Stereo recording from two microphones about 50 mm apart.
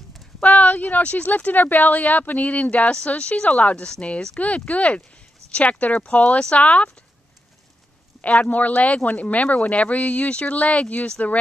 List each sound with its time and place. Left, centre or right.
0.4 s speech: left
3.7 s speech: centre
8.2 s speech: left